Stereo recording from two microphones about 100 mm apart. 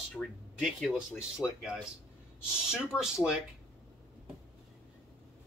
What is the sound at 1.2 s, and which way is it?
Speech, 10° right (ahead or behind).